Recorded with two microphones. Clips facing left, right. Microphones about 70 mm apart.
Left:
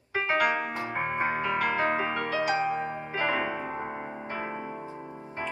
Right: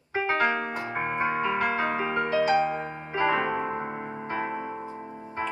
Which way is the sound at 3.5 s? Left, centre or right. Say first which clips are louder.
Right 4 dB; centre.